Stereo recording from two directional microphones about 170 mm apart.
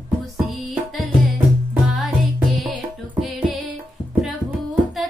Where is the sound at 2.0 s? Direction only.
Centre (ahead or behind).